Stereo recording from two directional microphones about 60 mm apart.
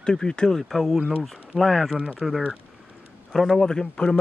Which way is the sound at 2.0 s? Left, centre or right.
Centre.